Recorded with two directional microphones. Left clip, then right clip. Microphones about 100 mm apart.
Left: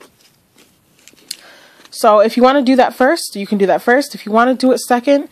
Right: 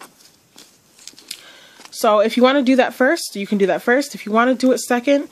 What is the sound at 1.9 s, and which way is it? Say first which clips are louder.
Speech: left 5 dB; 35° left (ahead or behind).